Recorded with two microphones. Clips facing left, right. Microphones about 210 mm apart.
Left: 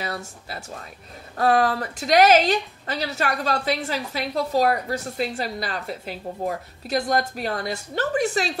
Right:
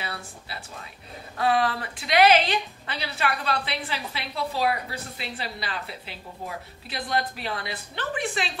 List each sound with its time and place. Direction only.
0.0 s a woman's voice: 45° left (ahead or behind)